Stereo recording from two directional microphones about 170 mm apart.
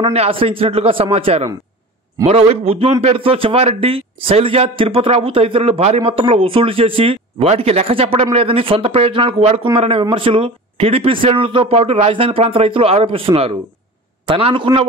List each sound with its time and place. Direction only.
0.0 s a man's voice: 35° right (ahead or behind)